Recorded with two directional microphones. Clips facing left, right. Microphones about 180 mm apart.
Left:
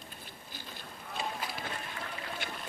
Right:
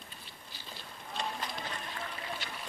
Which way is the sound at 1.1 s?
5° left (ahead or behind).